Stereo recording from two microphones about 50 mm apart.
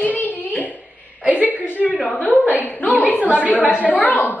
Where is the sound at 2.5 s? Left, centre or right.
Left.